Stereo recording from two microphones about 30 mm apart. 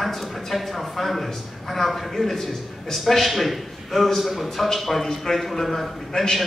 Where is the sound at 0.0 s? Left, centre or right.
Centre.